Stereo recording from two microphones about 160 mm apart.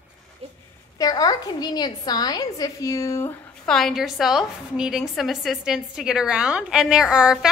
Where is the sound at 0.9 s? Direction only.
25° left (ahead or behind).